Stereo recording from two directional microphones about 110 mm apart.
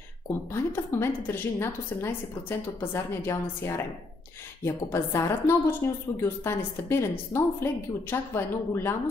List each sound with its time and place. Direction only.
0.5 s a woman's voice: 25° left (ahead or behind)